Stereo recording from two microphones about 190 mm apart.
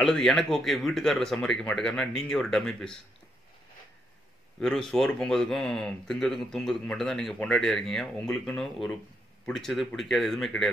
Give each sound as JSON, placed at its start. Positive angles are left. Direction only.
{"t": 0.0, "sound": "speech", "side_deg": 5}
{"t": 4.6, "sound": "speech", "side_deg": 5}